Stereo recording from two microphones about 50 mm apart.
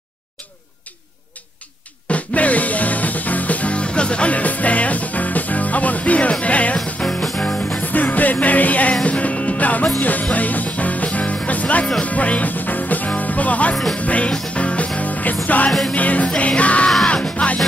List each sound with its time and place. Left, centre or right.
2.0 s music: left
7.0 s music: centre
7.8 s music: left